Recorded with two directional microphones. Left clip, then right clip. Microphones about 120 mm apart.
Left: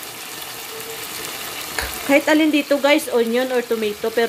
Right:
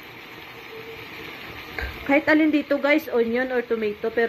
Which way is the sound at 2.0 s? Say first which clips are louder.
Left 3 dB; 15° left (ahead or behind).